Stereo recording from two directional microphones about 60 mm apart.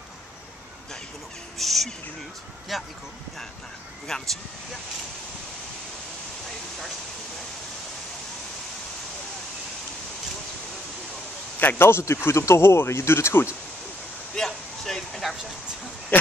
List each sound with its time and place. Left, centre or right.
1.6 s speech: centre
4.1 s speech: centre
11.6 s speech: left
14.3 s a sound: centre
16.1 s speech: left